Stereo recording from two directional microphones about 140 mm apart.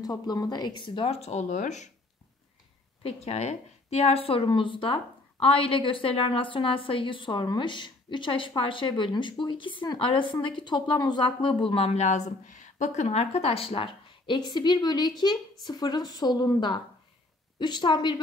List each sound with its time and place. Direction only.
0.0 s speech: 25° left (ahead or behind); by 1.9 s 60° left (ahead or behind)
3.0 s speech: 50° left (ahead or behind)
11.7 s speech: 45° left (ahead or behind)